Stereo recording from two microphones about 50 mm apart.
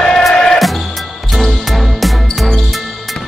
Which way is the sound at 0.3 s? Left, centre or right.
Centre.